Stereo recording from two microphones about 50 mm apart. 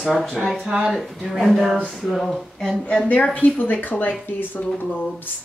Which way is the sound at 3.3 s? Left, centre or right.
Left.